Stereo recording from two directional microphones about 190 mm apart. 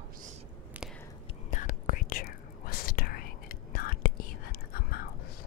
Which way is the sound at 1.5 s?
40° left (ahead or behind).